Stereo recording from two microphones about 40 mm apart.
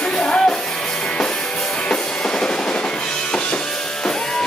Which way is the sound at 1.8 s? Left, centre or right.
Left.